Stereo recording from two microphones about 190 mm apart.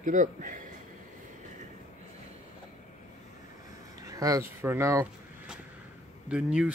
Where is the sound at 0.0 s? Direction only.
45° right (ahead or behind).